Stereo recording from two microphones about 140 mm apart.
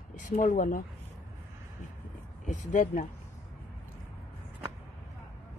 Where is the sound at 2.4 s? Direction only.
65° left (ahead or behind).